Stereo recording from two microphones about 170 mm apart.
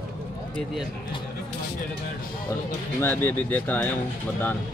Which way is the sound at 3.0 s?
10° left (ahead or behind).